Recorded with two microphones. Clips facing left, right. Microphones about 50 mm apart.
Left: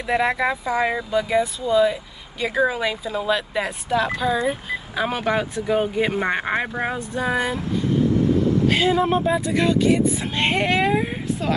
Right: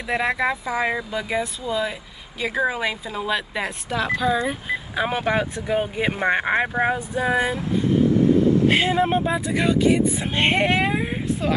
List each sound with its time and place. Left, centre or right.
0.0 s speech: centre
8.6 s speech: right
9.2 s speech: centre